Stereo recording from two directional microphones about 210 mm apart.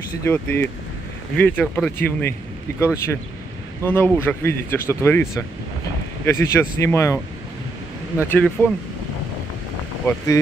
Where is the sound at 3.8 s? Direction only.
10° left (ahead or behind).